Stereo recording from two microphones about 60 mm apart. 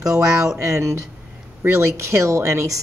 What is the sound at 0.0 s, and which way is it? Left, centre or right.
A woman's voice, right.